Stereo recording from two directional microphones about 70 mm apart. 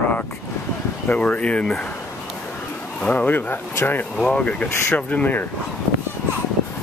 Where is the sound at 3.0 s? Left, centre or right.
Left.